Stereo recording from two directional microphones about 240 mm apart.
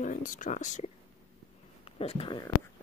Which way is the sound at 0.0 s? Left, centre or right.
Left.